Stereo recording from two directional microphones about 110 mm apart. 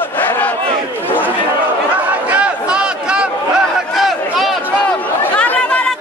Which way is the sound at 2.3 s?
10° right (ahead or behind).